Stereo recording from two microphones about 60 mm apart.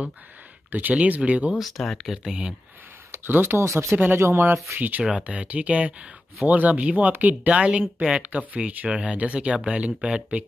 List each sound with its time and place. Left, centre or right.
0.7 s speech: right
1.6 s speech: centre
3.1 s speech: right
4.7 s speech: right